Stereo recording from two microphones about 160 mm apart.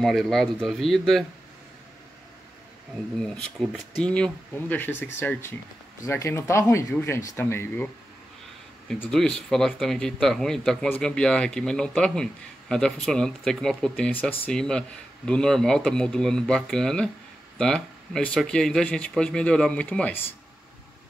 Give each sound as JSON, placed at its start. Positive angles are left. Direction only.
{"t": 0.0, "sound": "a man's voice", "side_deg": 0}
{"t": 3.5, "sound": "a man's voice", "side_deg": 0}